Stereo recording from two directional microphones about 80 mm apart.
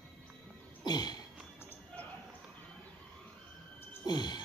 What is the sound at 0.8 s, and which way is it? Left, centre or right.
Throat clearing, left.